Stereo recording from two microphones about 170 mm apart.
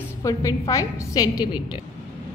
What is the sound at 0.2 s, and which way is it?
A woman's voice, 20° left (ahead or behind).